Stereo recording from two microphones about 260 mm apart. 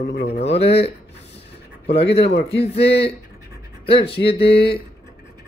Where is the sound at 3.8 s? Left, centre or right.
Left.